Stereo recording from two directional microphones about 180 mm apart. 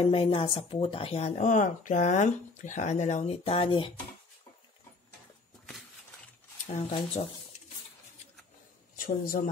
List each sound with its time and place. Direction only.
0.0 s speech: 35° left (ahead or behind)
6.9 s speech: 30° left (ahead or behind)
8.9 s speech: 55° left (ahead or behind)